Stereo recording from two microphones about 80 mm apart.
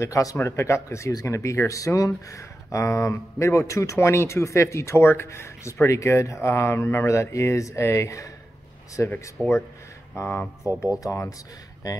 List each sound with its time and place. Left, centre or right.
0.0 s speech: left
9.0 s speech: left
9.4 s speech: centre
10.1 s speech: left
10.6 s speech: left